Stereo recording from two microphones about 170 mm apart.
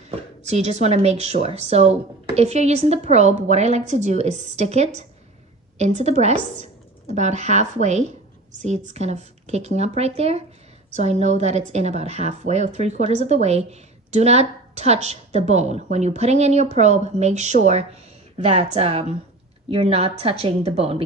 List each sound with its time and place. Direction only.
0.1 s a woman's voice: 40° right (ahead or behind)